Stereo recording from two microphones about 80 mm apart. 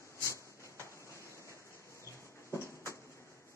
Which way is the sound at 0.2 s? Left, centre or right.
Left.